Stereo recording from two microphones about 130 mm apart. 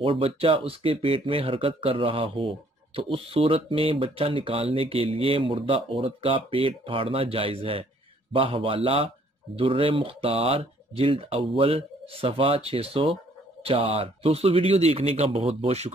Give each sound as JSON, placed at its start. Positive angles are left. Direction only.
{"t": 0.0, "sound": "speech", "side_deg": -45}